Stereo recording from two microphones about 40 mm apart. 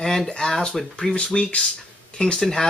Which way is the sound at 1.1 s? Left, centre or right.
Left.